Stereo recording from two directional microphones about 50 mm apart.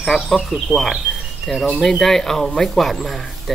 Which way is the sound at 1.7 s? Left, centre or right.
Centre.